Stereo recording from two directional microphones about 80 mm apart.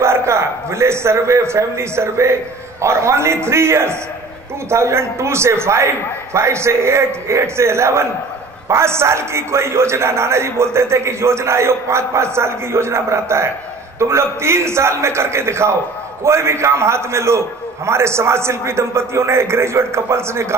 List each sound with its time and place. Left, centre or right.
0.0 s a man's voice: right